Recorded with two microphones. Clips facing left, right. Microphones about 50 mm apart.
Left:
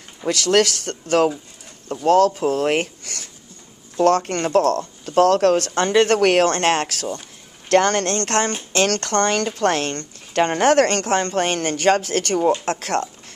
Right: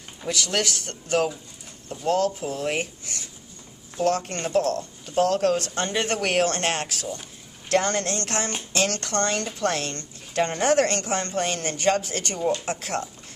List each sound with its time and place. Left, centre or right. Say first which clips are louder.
0.2 s speech: left 9 dB; left
1.9 s speech: left 8 dB; left
3.9 s a woman's voice: left 7 dB; left
8.7 s a woman's voice: left 6 dB; left